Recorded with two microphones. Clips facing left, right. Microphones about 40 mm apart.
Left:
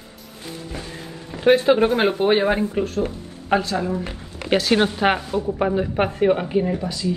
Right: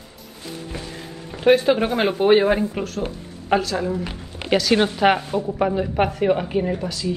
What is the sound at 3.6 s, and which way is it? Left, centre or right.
Speech, left.